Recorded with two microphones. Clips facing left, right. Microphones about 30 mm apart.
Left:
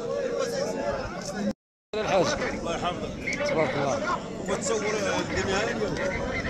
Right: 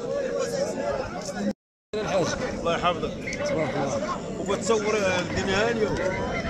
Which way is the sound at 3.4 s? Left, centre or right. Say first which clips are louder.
Left 1 dB; left.